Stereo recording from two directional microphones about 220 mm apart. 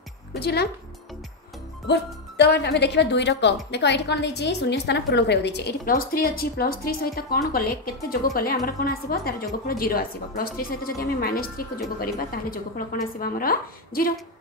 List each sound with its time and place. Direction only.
0.4 s a woman's voice: 45° left (ahead or behind)
1.9 s a woman's voice: 50° left (ahead or behind)